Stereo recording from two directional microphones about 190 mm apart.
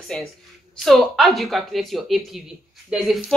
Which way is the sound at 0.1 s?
5° left (ahead or behind).